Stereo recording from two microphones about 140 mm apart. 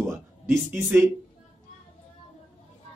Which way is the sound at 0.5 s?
20° right (ahead or behind).